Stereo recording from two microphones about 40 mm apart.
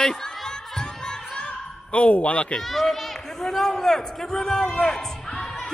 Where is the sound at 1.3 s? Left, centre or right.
Left.